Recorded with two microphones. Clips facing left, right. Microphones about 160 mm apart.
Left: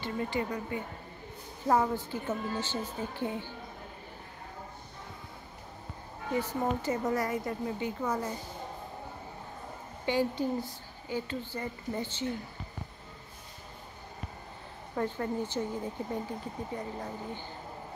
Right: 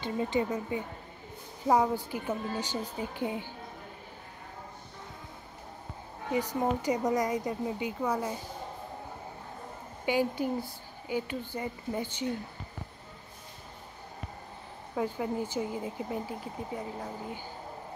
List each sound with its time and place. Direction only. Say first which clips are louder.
0.0 s speech: right 3 dB; 20° right (ahead or behind)
6.3 s speech: right 2 dB; 15° right (ahead or behind)
10.0 s speech: right 1 dB; 15° right (ahead or behind)
15.0 s speech: right 1 dB; 10° right (ahead or behind)